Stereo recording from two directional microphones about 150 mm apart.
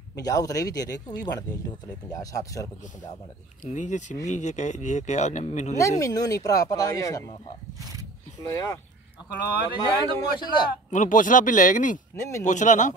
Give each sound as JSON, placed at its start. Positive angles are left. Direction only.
{"t": 0.2, "sound": "speech", "side_deg": 25}
{"t": 3.6, "sound": "speech", "side_deg": 55}
{"t": 5.8, "sound": "speech", "side_deg": 20}
{"t": 8.4, "sound": "speech", "side_deg": 20}
{"t": 9.8, "sound": "speech", "side_deg": 25}
{"t": 10.9, "sound": "speech", "side_deg": 60}
{"t": 12.2, "sound": "speech", "side_deg": 20}
{"t": 12.4, "sound": "speech", "side_deg": 55}